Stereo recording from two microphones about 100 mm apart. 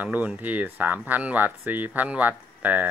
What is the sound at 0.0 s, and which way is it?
Speech, 15° right (ahead or behind).